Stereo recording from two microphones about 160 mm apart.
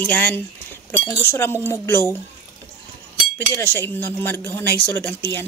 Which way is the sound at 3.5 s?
15° left (ahead or behind).